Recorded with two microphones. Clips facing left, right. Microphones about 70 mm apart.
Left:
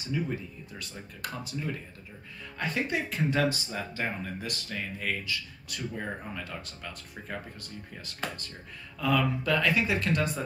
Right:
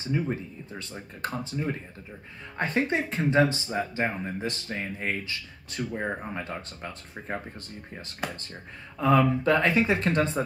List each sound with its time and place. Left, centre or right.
0.0 s speech: right
8.2 s speech: centre
9.0 s speech: right